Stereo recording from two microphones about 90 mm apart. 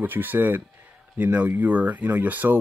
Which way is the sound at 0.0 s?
20° right (ahead or behind).